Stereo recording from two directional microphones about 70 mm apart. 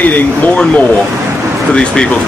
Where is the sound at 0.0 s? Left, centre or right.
Left.